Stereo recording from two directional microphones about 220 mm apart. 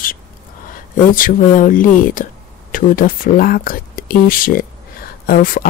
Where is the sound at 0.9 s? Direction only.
40° left (ahead or behind).